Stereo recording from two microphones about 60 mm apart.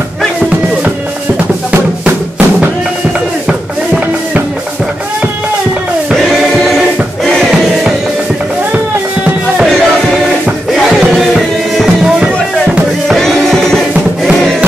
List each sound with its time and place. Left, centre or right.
1.7 s drum: right
3.4 s music: centre
6.1 s choir: centre
10.7 s music: centre
13.2 s music: centre